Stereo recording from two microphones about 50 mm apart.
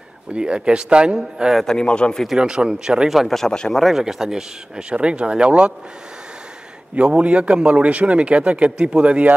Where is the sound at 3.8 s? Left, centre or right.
Centre.